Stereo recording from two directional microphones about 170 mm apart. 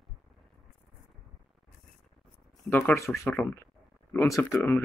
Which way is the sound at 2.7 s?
10° left (ahead or behind).